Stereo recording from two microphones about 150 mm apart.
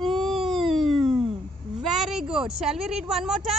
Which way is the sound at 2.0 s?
5° right (ahead or behind).